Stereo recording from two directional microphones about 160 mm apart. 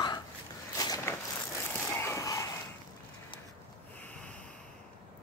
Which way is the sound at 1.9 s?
15° left (ahead or behind).